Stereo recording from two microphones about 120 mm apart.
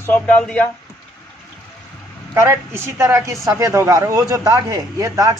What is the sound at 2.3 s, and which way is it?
Speech, 20° right (ahead or behind).